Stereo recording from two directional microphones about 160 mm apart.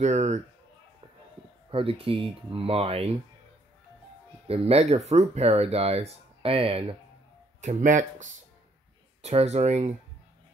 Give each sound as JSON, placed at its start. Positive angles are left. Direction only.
{"t": 0.0, "sound": "speech", "side_deg": -45}
{"t": 1.7, "sound": "speech", "side_deg": -35}
{"t": 4.5, "sound": "speech", "side_deg": -40}
{"t": 7.6, "sound": "speech", "side_deg": -50}